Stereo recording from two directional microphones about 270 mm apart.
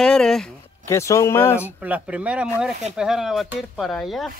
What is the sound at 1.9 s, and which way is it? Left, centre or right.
Speech, centre.